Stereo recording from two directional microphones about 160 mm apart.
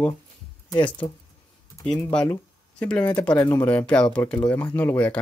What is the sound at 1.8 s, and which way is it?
Speech, 5° left (ahead or behind).